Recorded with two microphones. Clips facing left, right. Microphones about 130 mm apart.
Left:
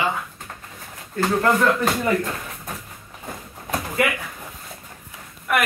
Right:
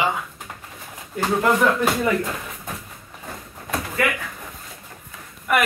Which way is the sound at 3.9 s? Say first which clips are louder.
Left 1 dB; 20° left (ahead or behind).